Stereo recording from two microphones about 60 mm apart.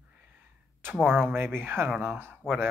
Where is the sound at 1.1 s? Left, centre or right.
Right.